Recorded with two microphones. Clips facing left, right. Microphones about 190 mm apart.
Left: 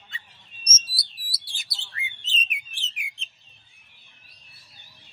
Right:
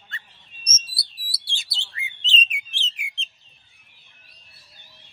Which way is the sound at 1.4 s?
25° right (ahead or behind).